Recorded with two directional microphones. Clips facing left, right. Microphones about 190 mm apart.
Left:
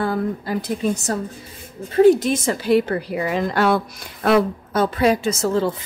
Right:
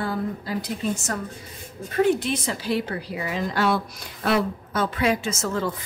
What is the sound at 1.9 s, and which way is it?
Speech, 35° left (ahead or behind).